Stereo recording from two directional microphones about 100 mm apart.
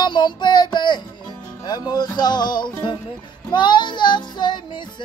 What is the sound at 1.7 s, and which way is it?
Child singing, 45° left (ahead or behind).